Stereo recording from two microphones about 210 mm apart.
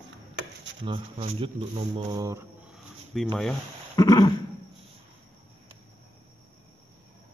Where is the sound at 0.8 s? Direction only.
25° right (ahead or behind).